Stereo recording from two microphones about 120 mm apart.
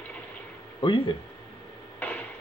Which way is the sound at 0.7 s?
45° left (ahead or behind).